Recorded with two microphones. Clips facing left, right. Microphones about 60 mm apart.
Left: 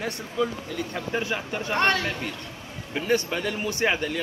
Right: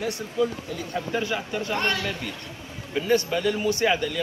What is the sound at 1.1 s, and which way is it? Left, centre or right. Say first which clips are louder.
Speech: right 1 dB; left.